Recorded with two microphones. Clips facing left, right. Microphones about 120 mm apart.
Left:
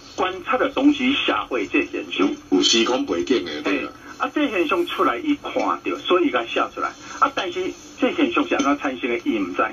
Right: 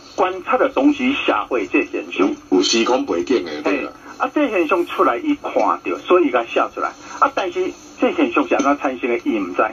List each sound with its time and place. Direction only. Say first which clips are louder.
0.2 s speech: right 5 dB; 45° right (ahead or behind)